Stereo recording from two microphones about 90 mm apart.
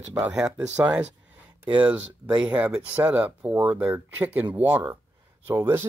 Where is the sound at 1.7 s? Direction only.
15° right (ahead or behind).